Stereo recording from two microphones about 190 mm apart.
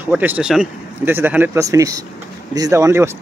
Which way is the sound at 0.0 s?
10° right (ahead or behind).